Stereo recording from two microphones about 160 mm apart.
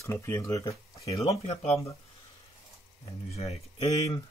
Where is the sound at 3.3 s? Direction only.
40° left (ahead or behind).